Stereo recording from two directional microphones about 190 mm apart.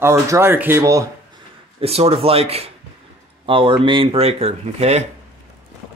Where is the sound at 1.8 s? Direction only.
30° right (ahead or behind).